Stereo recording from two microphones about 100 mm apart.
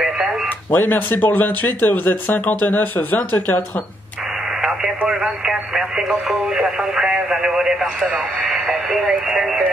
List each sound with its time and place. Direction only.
0.7 s speech: 20° left (ahead or behind)
4.6 s speech: 5° right (ahead or behind)
9.4 s music: centre (ahead or behind)